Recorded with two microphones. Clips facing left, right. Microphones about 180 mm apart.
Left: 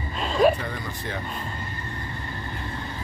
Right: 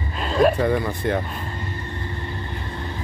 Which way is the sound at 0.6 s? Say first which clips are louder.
Right 11 dB; 60° right (ahead or behind).